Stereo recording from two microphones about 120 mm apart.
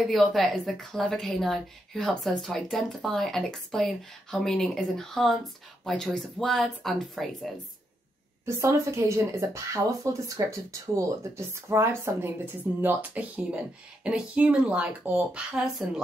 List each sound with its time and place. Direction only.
0.0 s a woman's voice: centre (ahead or behind)
8.5 s speech: 20° right (ahead or behind); by 15.9 s 5° right (ahead or behind)